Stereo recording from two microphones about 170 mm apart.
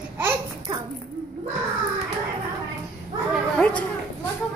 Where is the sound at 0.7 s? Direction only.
30° right (ahead or behind).